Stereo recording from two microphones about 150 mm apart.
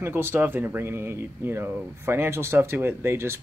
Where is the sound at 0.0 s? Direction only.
15° right (ahead or behind).